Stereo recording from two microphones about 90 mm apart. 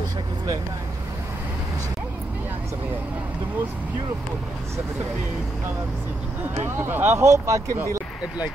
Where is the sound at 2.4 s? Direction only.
20° right (ahead or behind).